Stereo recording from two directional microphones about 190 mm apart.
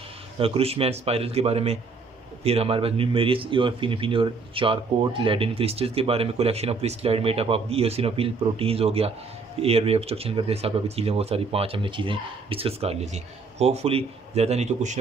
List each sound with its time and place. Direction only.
0.4 s speech: 30° right (ahead or behind)